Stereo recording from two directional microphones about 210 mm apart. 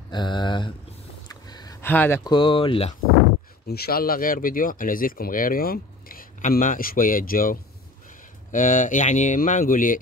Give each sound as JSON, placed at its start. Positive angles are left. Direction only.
{"t": 0.1, "sound": "speech", "side_deg": 20}
{"t": 1.3, "sound": "a sound", "side_deg": 20}
{"t": 2.3, "sound": "speech", "side_deg": 25}
{"t": 3.6, "sound": "speech", "side_deg": 50}